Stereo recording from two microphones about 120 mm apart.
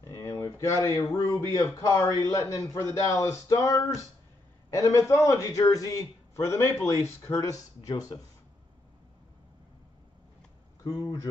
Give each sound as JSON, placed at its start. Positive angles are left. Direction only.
{"t": 0.2, "sound": "a man's voice", "side_deg": 20}
{"t": 7.9, "sound": "speech", "side_deg": 35}
{"t": 10.8, "sound": "speech", "side_deg": 30}